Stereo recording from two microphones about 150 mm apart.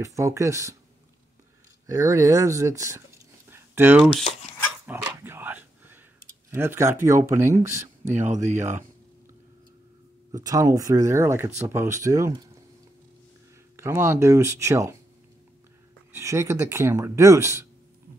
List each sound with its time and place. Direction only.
0.0 s speech: 20° right (ahead or behind)
1.9 s speech: 20° right (ahead or behind)
4.2 s speech: 45° left (ahead or behind)
4.8 s a sound: 15° right (ahead or behind)
8.1 s speech: 55° right (ahead or behind)
10.3 s speech: 20° right (ahead or behind)
13.7 s speech: 20° right (ahead or behind)
16.1 s speech: 20° right (ahead or behind)